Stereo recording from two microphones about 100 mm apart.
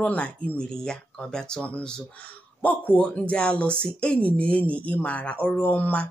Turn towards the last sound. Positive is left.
turn(degrees=15)  # may be behind; listen again after turning